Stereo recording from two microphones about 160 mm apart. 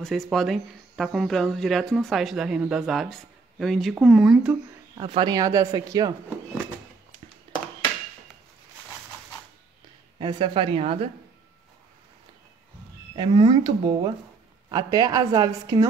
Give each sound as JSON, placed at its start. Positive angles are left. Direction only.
{"t": 0.0, "sound": "speech", "side_deg": 0}
{"t": 4.9, "sound": "speech", "side_deg": -30}
{"t": 10.1, "sound": "speech", "side_deg": -30}
{"t": 13.1, "sound": "speech", "side_deg": -30}